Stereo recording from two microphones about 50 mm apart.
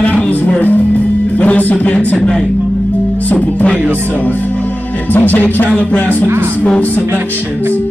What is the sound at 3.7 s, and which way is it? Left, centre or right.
Speech, right.